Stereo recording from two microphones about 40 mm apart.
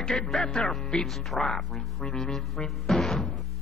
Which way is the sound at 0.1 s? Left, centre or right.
Centre.